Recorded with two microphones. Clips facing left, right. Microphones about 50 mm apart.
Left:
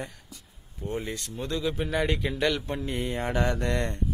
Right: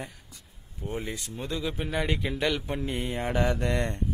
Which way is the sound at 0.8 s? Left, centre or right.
Centre.